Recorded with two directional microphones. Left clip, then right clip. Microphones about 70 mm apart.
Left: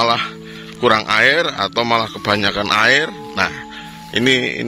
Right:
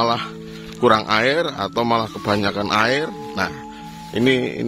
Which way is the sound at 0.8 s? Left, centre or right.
Right.